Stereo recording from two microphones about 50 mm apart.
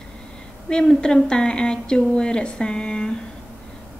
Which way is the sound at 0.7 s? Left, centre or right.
Centre.